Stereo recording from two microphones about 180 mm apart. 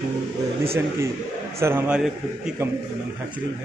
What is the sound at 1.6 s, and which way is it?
Speech, 10° right (ahead or behind).